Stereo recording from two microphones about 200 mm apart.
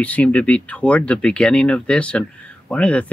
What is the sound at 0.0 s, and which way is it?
Speech, 5° left (ahead or behind).